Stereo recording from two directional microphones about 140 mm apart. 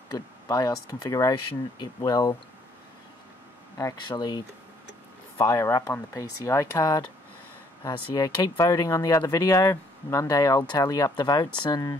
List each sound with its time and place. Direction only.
0.1 s speech: 30° left (ahead or behind)
3.7 s speech: 25° left (ahead or behind)
5.4 s speech: 20° left (ahead or behind)